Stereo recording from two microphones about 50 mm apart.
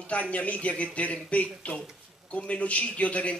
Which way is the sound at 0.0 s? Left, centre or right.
Left.